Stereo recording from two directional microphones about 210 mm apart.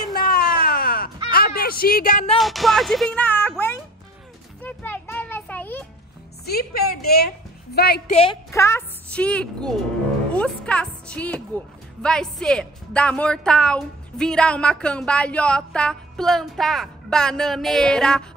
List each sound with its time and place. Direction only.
0.0 s caw: 45° left (ahead or behind)
2.3 s speech: centre (ahead or behind)
4.6 s children playing: 10° left (ahead or behind)
6.4 s a woman's voice: 45° left (ahead or behind)
8.1 s a woman's voice: 30° left (ahead or behind)
8.5 s a woman's voice: 15° left (ahead or behind)